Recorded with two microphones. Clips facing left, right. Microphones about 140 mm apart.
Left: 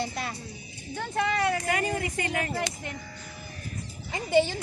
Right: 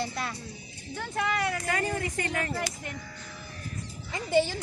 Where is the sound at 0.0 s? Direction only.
25° left (ahead or behind).